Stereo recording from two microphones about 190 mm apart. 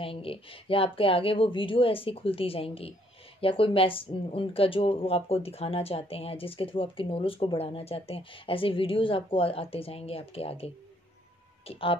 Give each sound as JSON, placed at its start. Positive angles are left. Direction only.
{"t": 0.0, "sound": "a woman's voice", "side_deg": 30}